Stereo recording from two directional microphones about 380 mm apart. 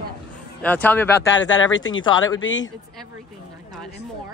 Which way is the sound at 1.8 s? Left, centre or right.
Left.